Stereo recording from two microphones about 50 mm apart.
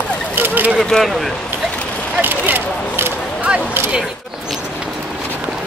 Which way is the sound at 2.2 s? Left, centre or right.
Right.